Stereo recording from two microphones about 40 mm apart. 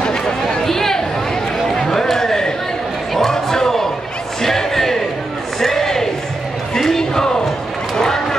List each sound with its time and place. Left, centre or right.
0.0 s a sound: centre
6.7 s crowd: centre
7.9 s vehicle: centre